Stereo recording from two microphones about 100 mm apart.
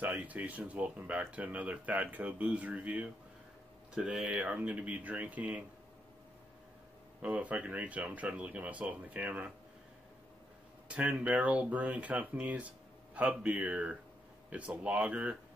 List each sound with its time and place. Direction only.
0.0 s speech: 15° right (ahead or behind)
7.2 s speech: 15° right (ahead or behind)
10.9 s speech: 10° right (ahead or behind)